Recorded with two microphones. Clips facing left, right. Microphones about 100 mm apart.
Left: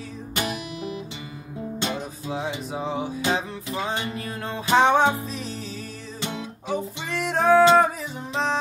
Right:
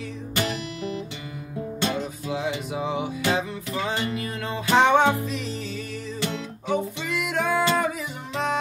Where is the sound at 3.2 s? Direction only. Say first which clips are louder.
Right 1 dB; 25° left (ahead or behind).